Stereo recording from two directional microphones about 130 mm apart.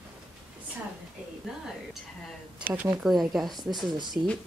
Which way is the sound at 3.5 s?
30° right (ahead or behind).